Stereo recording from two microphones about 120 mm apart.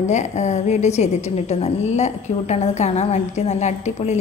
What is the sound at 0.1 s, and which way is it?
A woman's voice, 75° left (ahead or behind).